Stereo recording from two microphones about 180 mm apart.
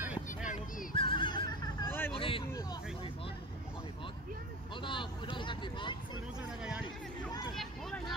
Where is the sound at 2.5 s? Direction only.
15° left (ahead or behind).